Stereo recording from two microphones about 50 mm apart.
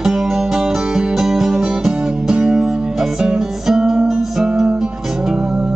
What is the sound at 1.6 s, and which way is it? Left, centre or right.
Music, centre.